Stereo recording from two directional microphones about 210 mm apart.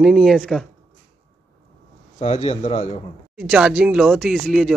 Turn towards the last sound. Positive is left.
turn(degrees=0)  # may be behind; listen again after turning